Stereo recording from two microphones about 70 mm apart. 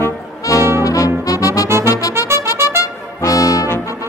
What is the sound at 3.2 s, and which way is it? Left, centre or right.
Brass instrument, left.